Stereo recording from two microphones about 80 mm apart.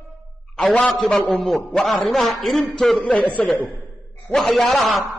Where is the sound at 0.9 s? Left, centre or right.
Centre.